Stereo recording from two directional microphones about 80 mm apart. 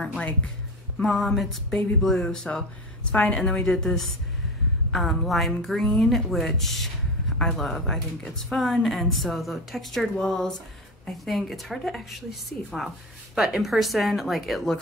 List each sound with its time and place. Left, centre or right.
1.0 s a woman's voice: centre